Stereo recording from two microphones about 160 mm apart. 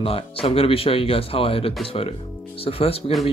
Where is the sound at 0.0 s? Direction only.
35° left (ahead or behind).